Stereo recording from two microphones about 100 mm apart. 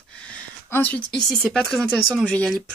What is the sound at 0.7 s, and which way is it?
Speech, 15° left (ahead or behind).